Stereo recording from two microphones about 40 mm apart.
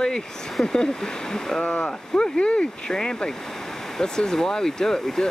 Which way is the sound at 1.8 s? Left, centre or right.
Centre.